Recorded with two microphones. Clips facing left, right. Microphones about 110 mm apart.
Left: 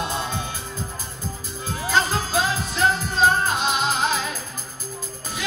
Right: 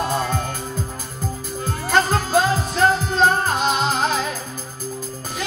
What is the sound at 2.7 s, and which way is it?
Music, 45° right (ahead or behind).